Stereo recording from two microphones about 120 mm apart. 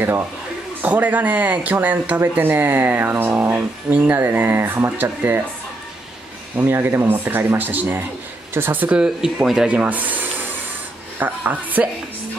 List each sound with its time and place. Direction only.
0.8 s speech: 15° right (ahead or behind)
6.5 s speech: 20° right (ahead or behind)